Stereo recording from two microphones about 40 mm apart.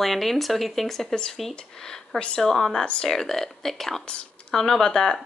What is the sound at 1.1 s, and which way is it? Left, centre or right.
Speech, centre.